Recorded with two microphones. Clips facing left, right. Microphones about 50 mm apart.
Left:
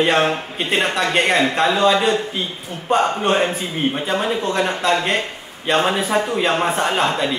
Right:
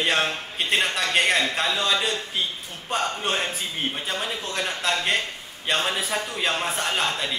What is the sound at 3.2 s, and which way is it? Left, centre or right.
Speech, centre.